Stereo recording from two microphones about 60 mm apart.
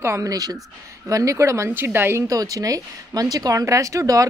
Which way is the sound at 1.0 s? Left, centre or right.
Right.